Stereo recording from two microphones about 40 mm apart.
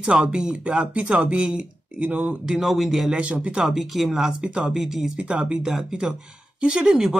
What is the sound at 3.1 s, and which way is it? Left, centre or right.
Speech, right.